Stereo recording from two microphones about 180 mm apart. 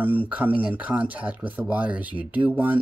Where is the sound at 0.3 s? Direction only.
5° right (ahead or behind).